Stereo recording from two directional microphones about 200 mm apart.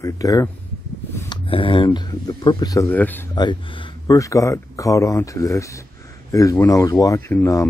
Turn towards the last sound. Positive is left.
turn(degrees=15)  # may be behind; listen again after turning